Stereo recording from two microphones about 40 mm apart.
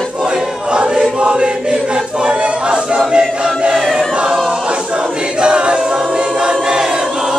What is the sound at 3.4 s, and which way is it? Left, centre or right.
Choir, centre.